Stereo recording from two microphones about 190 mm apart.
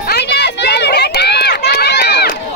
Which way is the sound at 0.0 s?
60° left (ahead or behind).